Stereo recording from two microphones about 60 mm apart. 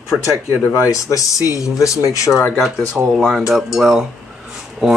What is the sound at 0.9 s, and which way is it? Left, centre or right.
Speech, left.